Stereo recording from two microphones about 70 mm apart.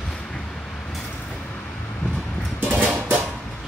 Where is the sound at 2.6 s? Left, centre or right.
Right.